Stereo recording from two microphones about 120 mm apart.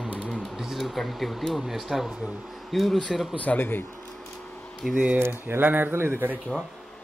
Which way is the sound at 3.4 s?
15° left (ahead or behind).